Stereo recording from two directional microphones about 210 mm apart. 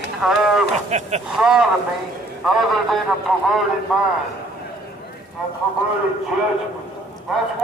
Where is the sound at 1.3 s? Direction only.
5° right (ahead or behind).